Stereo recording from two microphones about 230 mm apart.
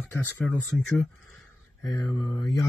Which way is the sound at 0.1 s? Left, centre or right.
Centre.